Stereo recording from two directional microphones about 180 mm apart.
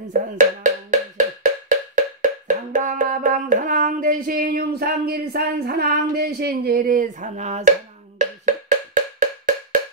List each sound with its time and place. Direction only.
0.1 s wood block: 45° right (ahead or behind)
2.4 s a sound: 45° right (ahead or behind)
8.2 s percussion: 45° right (ahead or behind)